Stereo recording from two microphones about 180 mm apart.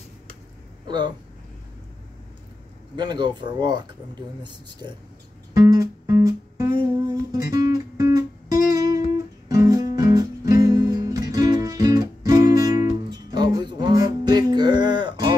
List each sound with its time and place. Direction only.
0.8 s speech: 25° right (ahead or behind)
3.0 s speech: 25° right (ahead or behind)
5.5 s music: 20° right (ahead or behind)